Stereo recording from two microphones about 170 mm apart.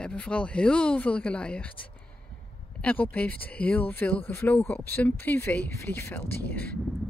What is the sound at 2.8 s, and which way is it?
Speech, 10° left (ahead or behind).